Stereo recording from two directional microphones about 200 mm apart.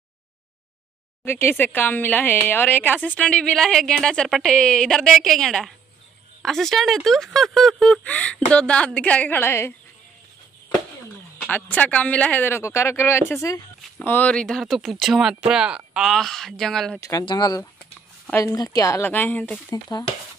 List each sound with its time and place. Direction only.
1.2 s speech: 10° left (ahead or behind)
11.4 s speech: 10° left (ahead or behind)
17.0 s speech: 20° left (ahead or behind)